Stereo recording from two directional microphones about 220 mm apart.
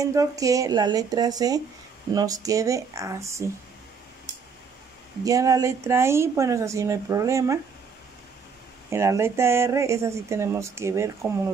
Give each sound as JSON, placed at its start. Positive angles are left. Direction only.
{"t": 0.0, "sound": "speech", "side_deg": -15}
{"t": 5.2, "sound": "speech", "side_deg": -15}
{"t": 8.9, "sound": "speech", "side_deg": -10}